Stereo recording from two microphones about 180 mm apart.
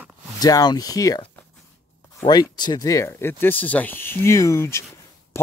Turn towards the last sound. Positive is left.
turn(degrees=15)  # may be behind; listen again after turning